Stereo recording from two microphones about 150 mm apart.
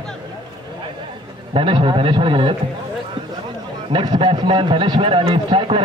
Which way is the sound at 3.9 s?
30° right (ahead or behind).